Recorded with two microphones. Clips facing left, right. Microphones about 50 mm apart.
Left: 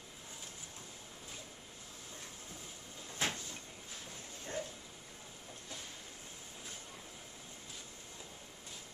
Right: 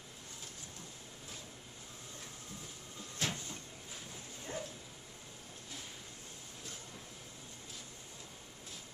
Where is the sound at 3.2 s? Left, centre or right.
Left.